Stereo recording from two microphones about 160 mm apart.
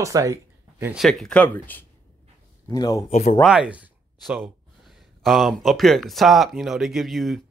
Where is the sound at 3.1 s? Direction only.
45° left (ahead or behind).